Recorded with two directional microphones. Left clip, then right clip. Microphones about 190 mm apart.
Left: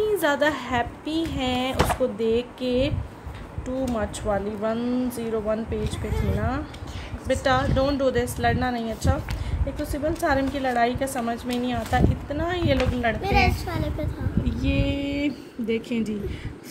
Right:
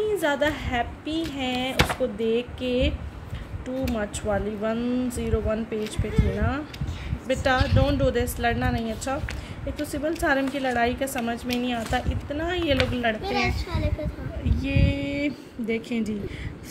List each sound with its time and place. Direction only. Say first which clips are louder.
0.2 s speech: left 2 dB; centre (ahead or behind)
3.9 s a woman's voice: even; 5° right (ahead or behind)
7.2 s a woman's voice: left 1 dB; 5° right (ahead or behind)
13.2 s a child's voice: left 4 dB; 45° left (ahead or behind)
14.6 s speech: left 1 dB; 5° right (ahead or behind)